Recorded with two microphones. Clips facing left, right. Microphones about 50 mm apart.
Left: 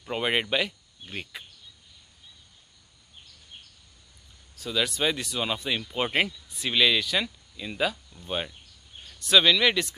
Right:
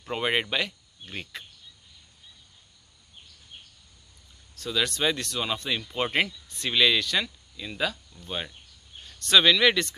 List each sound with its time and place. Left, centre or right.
0.0 s speech: centre
4.6 s speech: centre